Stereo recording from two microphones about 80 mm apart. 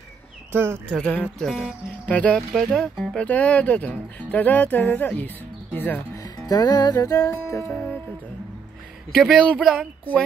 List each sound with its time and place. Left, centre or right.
0.5 s speech: right
1.0 s speech: centre
1.4 s speech: centre
2.0 s speech: centre
2.3 s speech: centre
3.2 s speech: centre
6.1 s music: left
9.1 s speech: centre